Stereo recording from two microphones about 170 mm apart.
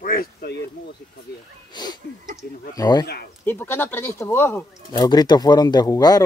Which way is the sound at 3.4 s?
15° left (ahead or behind).